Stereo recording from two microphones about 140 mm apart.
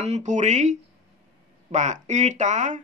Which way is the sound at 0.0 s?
55° right (ahead or behind).